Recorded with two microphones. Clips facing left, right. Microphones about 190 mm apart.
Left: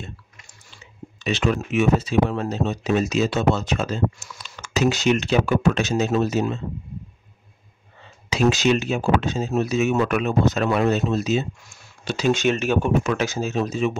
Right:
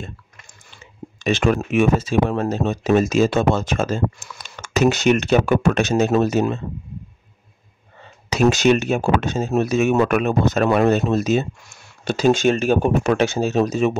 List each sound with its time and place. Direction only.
1.2 s speech: 50° right (ahead or behind)
8.4 s speech: 50° right (ahead or behind)
12.3 s speech: 35° right (ahead or behind)